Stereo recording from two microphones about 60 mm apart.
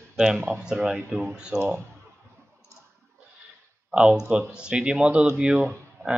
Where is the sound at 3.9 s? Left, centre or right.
Centre.